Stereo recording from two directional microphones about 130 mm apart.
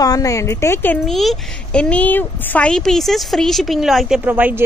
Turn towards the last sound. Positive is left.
turn(degrees=-15)  # may be behind; listen again after turning